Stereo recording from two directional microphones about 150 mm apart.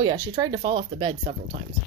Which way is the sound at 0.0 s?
35° right (ahead or behind).